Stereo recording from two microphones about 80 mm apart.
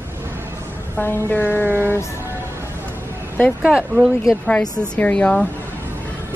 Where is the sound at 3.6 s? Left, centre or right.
Centre.